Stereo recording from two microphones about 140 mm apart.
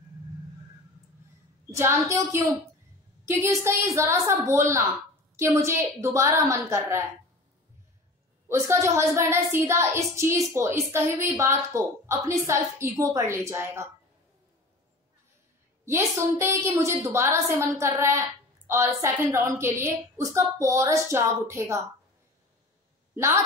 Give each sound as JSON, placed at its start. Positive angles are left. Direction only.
{"t": 1.7, "sound": "a woman's voice", "side_deg": -20}
{"t": 8.5, "sound": "a woman's voice", "side_deg": -20}
{"t": 15.8, "sound": "a woman's voice", "side_deg": -20}